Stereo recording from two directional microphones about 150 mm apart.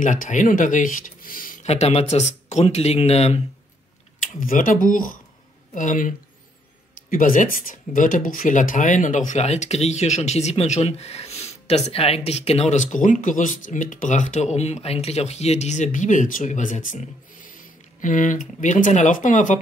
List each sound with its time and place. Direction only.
0.0 s speech: 60° left (ahead or behind)
1.7 s speech: 45° left (ahead or behind)
4.2 s speech: 65° left (ahead or behind)